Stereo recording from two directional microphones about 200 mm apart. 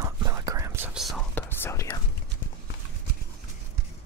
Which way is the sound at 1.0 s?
Centre (ahead or behind).